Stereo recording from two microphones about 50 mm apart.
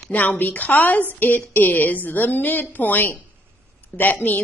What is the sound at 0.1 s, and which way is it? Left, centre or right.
A woman's voice, left.